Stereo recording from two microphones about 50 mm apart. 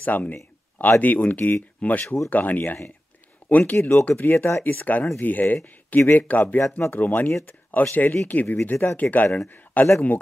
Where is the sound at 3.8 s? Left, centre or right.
Left.